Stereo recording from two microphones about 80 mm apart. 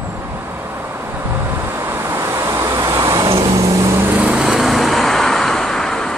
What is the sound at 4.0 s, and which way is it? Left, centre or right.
Vehicle, right.